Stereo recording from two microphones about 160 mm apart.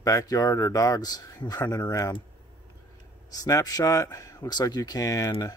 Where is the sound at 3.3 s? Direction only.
25° left (ahead or behind).